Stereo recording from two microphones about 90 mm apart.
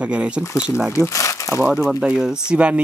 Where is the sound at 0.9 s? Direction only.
35° left (ahead or behind).